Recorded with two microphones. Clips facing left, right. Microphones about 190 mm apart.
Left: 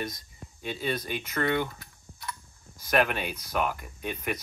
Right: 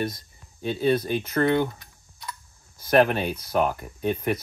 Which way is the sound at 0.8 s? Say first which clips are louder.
Right 10 dB; 30° right (ahead or behind).